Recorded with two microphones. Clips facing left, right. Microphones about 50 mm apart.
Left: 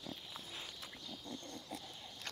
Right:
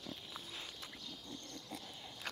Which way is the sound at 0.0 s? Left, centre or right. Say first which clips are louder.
Even; centre.